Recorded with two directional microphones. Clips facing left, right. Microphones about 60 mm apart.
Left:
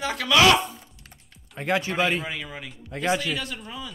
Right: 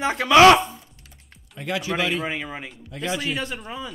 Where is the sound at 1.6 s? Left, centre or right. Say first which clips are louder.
Left 3 dB; left.